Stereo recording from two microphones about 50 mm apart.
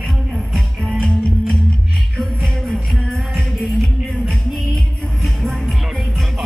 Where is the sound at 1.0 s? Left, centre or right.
Centre.